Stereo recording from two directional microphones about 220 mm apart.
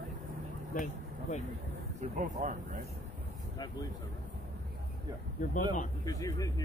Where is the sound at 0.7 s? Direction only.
35° left (ahead or behind).